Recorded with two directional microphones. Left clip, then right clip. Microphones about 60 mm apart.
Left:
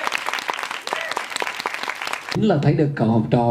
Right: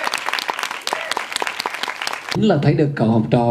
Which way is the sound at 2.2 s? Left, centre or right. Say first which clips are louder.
Right 2 dB; right.